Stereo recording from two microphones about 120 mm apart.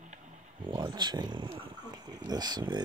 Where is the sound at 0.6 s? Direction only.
40° right (ahead or behind).